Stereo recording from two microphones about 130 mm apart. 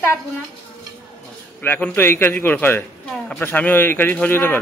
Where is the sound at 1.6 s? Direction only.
15° left (ahead or behind).